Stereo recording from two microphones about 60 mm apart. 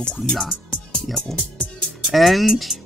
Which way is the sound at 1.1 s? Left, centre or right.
Centre.